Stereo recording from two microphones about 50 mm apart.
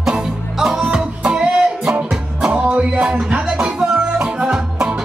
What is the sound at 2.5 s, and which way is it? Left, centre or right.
Music, right.